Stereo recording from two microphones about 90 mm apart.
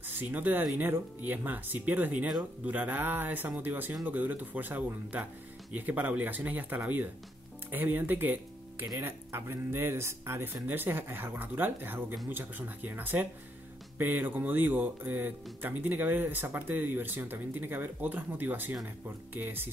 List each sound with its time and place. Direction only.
0.2 s speech: 20° right (ahead or behind)